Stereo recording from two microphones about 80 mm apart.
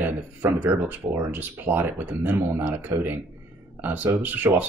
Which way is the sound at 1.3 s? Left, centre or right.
Right.